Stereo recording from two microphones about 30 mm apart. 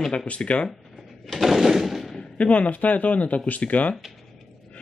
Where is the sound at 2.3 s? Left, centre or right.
Left.